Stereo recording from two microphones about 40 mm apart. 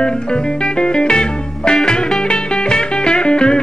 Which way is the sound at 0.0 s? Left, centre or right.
Left.